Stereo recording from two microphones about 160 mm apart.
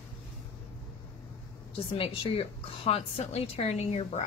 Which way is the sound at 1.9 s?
35° left (ahead or behind).